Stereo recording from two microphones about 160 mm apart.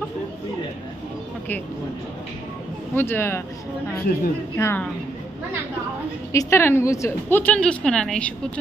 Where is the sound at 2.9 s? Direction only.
15° left (ahead or behind).